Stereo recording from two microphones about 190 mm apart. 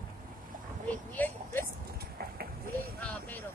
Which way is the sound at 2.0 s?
55° right (ahead or behind).